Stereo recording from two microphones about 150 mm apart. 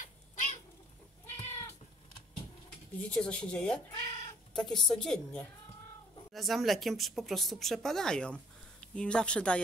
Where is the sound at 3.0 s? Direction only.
10° left (ahead or behind).